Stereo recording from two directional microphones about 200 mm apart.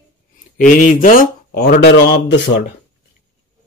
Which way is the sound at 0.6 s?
40° left (ahead or behind).